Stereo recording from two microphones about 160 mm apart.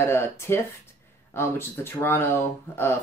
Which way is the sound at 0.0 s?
15° left (ahead or behind).